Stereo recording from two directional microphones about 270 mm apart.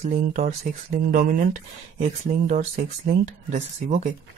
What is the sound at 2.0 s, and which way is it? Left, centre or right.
Speech, right.